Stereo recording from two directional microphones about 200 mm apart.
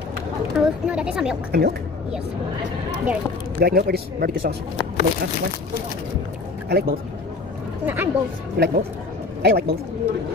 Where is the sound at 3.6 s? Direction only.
50° right (ahead or behind).